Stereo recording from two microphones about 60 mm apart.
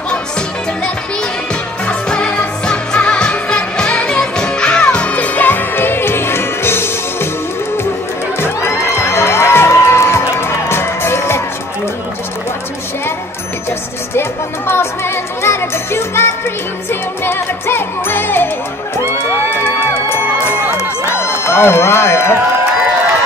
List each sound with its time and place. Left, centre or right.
1.9 s music: centre; by 7.2 s left
8.4 s music: left
14.7 s music: left
19.6 s music: left
21.1 s speech: left